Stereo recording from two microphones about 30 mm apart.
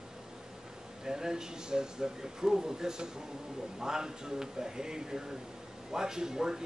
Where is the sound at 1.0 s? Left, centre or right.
Centre.